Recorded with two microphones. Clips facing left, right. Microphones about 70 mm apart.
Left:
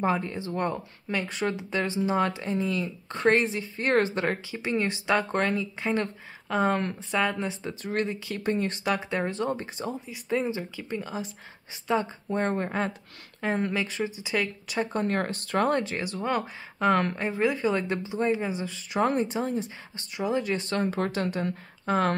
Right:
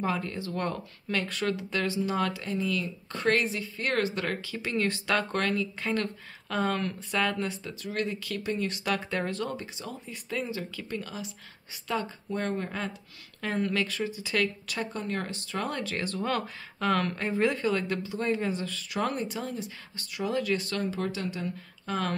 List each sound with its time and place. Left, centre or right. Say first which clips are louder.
0.0 s speech: left 4 dB; left
4.5 s speech: left 2 dB; centre
7.8 s speech: left 3 dB; left
8.4 s speech: left 5 dB; left
8.8 s speech: left 1 dB; centre
14.9 s speech: left 6 dB; left
15.8 s speech: left 1 dB; centre
17.2 s a woman's voice: left 1 dB; centre
17.6 s speech: left 2 dB; left
20.9 s speech: left 4 dB; left
21.8 s speech: left 6 dB; left